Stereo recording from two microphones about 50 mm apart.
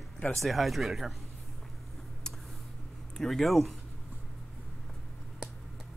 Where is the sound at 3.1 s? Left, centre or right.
Centre.